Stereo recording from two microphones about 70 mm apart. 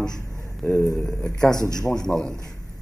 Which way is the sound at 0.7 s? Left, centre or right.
Left.